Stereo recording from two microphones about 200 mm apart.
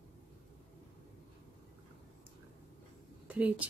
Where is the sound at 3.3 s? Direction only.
5° right (ahead or behind).